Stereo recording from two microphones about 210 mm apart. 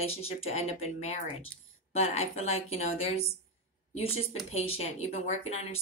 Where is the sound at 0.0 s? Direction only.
30° left (ahead or behind).